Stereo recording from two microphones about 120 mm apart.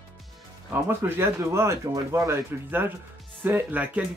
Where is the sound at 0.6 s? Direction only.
20° right (ahead or behind).